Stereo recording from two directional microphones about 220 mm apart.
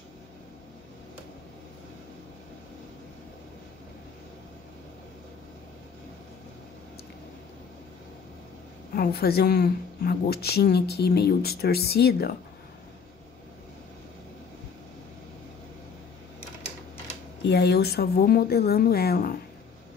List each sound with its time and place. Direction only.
8.9 s a woman's voice: 45° left (ahead or behind)
17.4 s a woman's voice: 50° left (ahead or behind)